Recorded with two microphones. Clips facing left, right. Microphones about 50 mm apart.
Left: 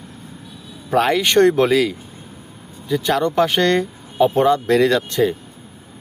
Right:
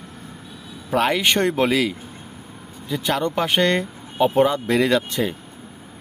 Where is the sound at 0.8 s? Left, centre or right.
Centre.